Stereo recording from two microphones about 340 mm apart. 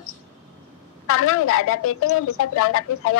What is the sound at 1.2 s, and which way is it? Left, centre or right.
A woman's voice, left.